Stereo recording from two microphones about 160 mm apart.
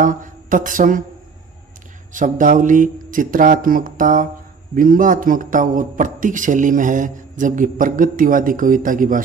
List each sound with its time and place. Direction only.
0.0 s speech: 55° right (ahead or behind)
2.1 s a man's voice: 55° right (ahead or behind)